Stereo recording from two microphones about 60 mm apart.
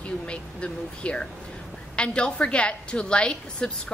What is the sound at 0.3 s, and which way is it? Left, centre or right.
A woman's voice, centre.